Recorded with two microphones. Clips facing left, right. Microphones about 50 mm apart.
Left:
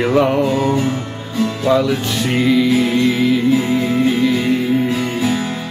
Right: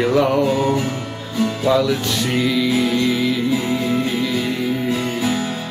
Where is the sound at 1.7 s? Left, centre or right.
Centre.